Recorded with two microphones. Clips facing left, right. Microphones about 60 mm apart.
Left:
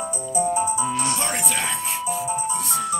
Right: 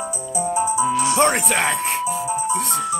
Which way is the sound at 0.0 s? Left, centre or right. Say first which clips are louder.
Left 1 dB; centre.